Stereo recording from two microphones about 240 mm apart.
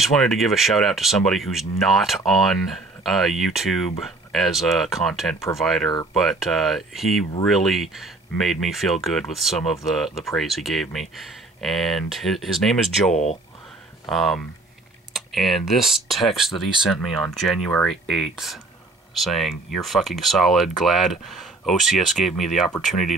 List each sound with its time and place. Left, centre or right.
0.0 s speech: centre
13.1 s speech: left
14.0 s speech: centre